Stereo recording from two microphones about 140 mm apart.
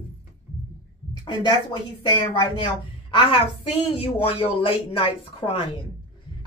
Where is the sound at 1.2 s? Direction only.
35° left (ahead or behind).